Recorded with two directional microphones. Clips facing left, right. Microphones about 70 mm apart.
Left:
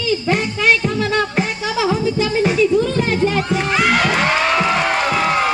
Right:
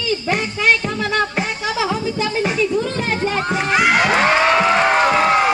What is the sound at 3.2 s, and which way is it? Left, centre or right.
Run, right.